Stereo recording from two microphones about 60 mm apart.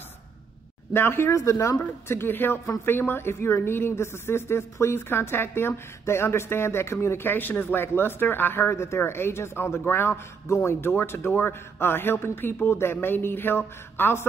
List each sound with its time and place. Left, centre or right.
0.9 s speech: left
1.3 s speech: left
1.8 s a woman's voice: left
7.2 s speech: left